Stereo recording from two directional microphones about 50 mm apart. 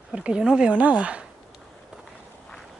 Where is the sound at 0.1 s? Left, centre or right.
Centre.